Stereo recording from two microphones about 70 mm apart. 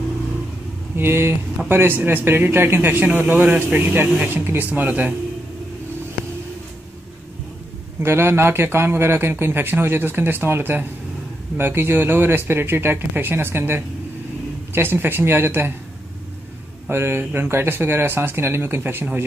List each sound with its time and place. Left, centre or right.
0.9 s a man's voice: right
8.0 s speech: right
16.9 s speech: right